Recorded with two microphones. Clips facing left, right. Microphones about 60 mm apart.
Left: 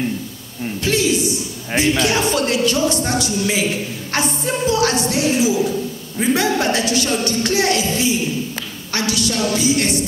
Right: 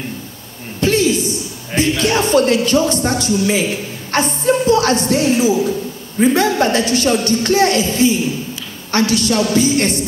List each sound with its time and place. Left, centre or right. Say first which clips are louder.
0.7 s a sound: right 4 dB; right
1.7 s a man's voice: right 1 dB; left
2.1 s speech: right 5 dB; right